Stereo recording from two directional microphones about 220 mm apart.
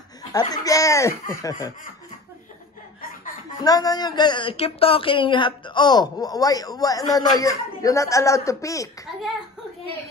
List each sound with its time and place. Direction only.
0.3 s a woman's voice: 15° left (ahead or behind)
3.0 s chuckle: 40° left (ahead or behind)
3.6 s a woman's voice: 15° left (ahead or behind)